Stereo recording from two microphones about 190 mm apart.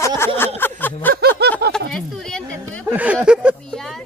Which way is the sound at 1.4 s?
60° right (ahead or behind).